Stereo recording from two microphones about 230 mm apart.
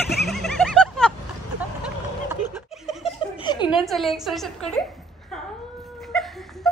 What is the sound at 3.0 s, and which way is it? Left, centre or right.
Snicker, centre.